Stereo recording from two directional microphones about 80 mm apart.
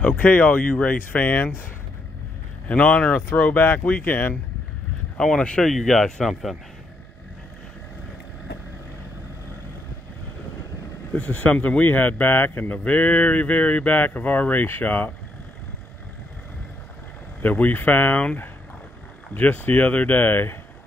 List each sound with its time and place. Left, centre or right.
0.0 s speech: left
2.7 s speech: centre
5.1 s speech: centre
11.1 s speech: centre
17.4 s speech: left